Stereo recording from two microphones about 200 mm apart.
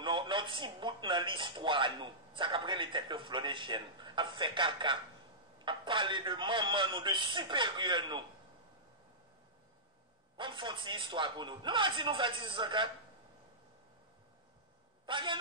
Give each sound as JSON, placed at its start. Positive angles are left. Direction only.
{"t": 0.0, "sound": "speech", "side_deg": -25}
{"t": 10.3, "sound": "speech", "side_deg": -25}
{"t": 15.0, "sound": "a man's voice", "side_deg": -25}